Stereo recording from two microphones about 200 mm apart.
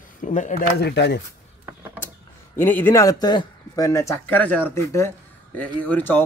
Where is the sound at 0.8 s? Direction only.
55° left (ahead or behind).